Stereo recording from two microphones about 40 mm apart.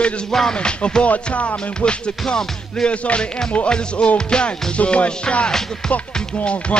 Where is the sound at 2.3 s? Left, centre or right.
Centre.